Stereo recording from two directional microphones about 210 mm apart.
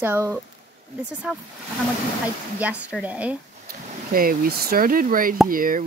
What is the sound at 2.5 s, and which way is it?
Speech, 5° right (ahead or behind).